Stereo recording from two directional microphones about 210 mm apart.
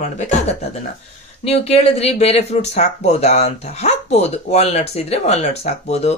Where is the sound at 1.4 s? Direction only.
30° left (ahead or behind).